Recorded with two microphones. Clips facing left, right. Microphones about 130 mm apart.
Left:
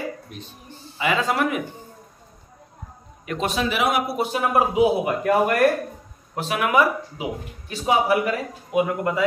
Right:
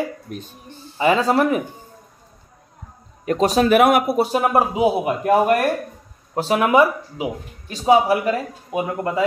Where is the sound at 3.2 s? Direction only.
40° right (ahead or behind).